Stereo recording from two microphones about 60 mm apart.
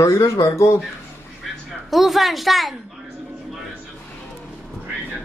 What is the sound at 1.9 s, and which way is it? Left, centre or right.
Speech, centre.